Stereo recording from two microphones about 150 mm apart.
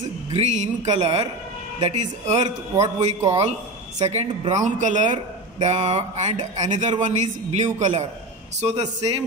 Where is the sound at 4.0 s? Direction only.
45° right (ahead or behind).